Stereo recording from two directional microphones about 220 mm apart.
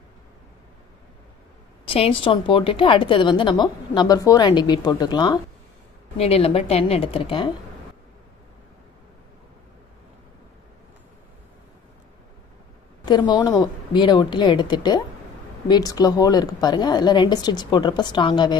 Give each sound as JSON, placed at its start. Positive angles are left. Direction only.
{"t": 1.9, "sound": "a woman's voice", "side_deg": 25}
{"t": 13.0, "sound": "a woman's voice", "side_deg": 20}